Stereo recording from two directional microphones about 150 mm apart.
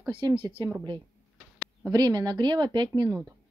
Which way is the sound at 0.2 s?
25° right (ahead or behind).